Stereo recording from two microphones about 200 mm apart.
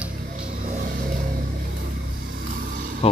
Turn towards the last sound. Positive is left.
turn(degrees=30)  # may be behind; listen again after turning